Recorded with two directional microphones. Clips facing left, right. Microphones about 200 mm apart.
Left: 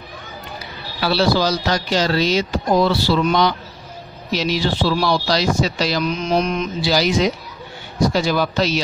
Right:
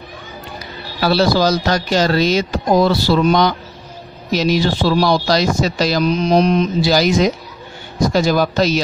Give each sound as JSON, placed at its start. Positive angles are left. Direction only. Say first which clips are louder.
{"t": 1.0, "sound": "speech", "louder": "right 3 dB", "side_deg": -45}